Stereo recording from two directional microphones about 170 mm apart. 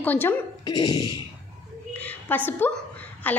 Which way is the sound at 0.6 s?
25° left (ahead or behind).